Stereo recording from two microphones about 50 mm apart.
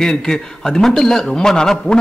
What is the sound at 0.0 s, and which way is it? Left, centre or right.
Speech, centre.